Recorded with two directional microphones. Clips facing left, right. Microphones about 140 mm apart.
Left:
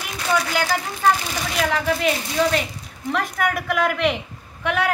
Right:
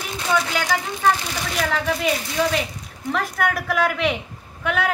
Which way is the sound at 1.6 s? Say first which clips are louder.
Left 2 dB; centre (ahead or behind).